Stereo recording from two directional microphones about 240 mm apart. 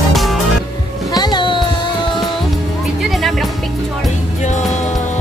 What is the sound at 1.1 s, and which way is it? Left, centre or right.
Music, centre.